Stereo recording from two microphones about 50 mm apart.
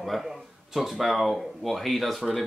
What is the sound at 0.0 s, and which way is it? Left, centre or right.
Speech, centre.